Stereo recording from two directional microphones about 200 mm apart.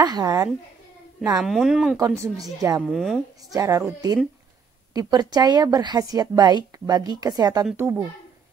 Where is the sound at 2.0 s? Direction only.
15° right (ahead or behind).